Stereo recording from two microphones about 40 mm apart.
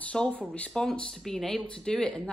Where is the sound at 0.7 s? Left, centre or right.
Centre.